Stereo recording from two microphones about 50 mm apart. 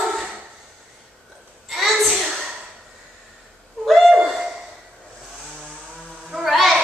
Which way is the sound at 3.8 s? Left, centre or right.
Centre.